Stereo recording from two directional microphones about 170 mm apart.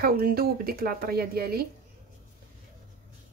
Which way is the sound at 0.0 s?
60° right (ahead or behind).